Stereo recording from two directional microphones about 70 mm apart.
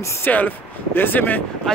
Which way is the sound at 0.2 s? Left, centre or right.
Left.